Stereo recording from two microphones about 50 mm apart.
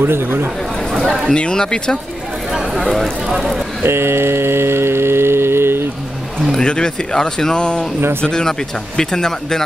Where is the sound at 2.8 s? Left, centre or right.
Centre.